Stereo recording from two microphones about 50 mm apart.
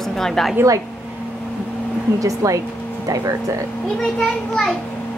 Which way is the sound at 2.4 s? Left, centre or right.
Right.